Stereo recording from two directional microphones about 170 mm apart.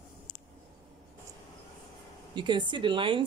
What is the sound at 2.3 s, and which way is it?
Speech, 25° right (ahead or behind).